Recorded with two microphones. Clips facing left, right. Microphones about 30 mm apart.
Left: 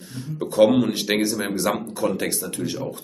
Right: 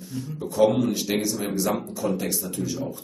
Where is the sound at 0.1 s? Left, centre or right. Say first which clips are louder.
Left 4 dB; left.